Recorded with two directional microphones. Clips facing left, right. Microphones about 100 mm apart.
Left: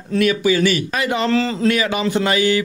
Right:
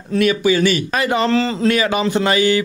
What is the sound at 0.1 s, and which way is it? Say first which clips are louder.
A man's voice: right 1 dB; 25° right (ahead or behind).